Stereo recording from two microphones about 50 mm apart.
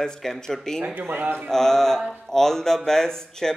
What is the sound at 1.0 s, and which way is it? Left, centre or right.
Speech, right.